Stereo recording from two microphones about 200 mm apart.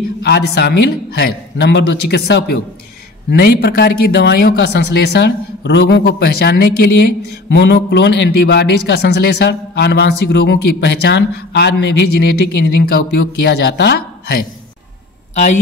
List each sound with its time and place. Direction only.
0.2 s a man's voice: 55° left (ahead or behind)